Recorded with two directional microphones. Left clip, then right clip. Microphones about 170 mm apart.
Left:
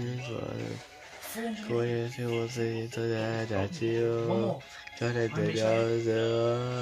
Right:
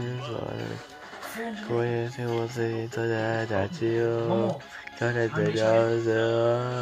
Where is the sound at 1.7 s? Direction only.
15° left (ahead or behind).